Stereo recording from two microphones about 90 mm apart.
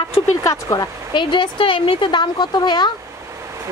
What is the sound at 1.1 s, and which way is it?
Speech, 60° left (ahead or behind).